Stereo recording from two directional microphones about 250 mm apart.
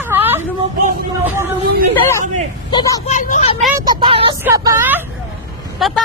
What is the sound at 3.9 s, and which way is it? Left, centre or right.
Vehicle, centre.